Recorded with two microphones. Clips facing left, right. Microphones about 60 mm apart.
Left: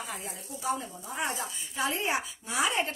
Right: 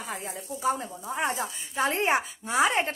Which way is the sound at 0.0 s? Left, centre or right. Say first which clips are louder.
Right 3 dB; right.